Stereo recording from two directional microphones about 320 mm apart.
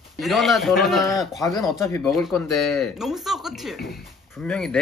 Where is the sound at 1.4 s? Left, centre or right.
Centre.